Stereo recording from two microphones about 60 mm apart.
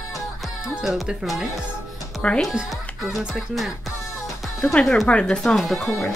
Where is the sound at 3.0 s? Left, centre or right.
Centre.